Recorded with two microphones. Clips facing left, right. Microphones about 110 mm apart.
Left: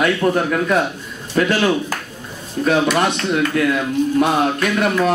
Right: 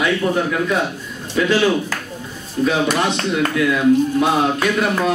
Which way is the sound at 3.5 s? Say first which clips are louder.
Right 3 dB; 50° left (ahead or behind).